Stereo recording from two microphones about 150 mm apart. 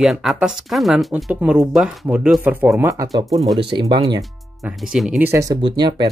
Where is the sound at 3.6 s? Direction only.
30° right (ahead or behind).